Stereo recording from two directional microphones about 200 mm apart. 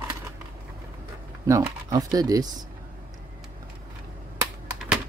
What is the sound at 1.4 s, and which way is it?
Speech, 15° right (ahead or behind).